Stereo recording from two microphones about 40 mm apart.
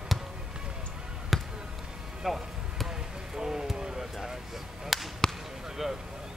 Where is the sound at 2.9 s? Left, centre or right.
Centre.